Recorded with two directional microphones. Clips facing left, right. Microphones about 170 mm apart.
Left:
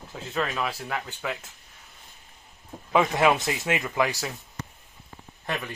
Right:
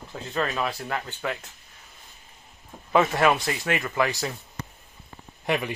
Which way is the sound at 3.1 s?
20° left (ahead or behind).